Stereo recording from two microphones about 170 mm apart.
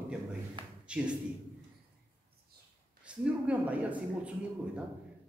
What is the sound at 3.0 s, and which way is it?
A man's voice, 5° right (ahead or behind).